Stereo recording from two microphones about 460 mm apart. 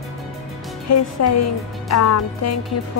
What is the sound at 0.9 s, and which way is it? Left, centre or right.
Music, left.